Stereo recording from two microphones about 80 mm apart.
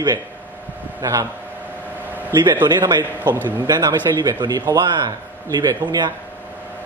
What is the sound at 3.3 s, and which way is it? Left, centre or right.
Speech, right.